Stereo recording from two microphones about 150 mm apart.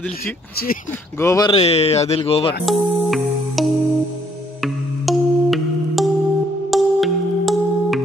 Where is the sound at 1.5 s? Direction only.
40° left (ahead or behind).